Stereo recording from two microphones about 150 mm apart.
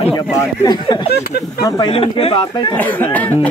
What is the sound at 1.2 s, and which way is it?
Speech, 85° left.